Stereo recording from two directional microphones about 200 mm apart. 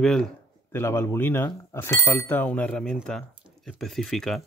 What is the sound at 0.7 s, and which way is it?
Speech, 10° left (ahead or behind).